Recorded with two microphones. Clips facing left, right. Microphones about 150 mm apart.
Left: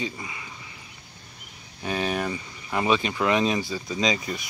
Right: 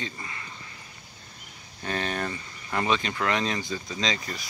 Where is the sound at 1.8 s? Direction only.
10° left (ahead or behind).